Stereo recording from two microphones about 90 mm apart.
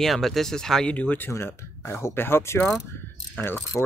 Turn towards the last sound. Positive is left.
turn(degrees=20)  # may be behind; listen again after turning